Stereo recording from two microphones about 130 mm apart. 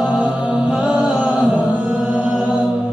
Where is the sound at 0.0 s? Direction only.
10° right (ahead or behind).